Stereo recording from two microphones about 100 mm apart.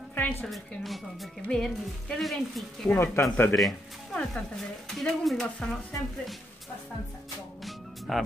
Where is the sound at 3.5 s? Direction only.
5° left (ahead or behind).